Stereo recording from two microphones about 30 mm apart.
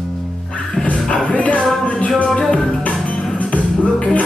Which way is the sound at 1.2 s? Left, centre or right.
Left.